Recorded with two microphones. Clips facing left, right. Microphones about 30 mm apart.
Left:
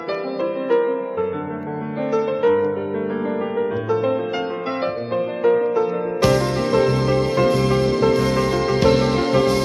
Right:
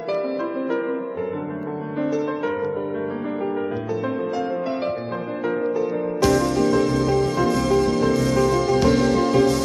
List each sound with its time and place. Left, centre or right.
0.1 s music: left
2.1 s music: left